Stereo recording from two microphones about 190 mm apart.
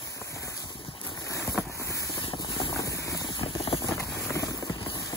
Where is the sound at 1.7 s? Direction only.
15° left (ahead or behind).